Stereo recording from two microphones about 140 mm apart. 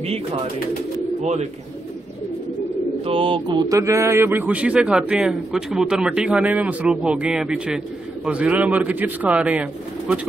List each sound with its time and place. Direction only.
1.2 s speech: 55° right (ahead or behind)
3.1 s speech: 40° right (ahead or behind); by 10.2 s 10° right (ahead or behind)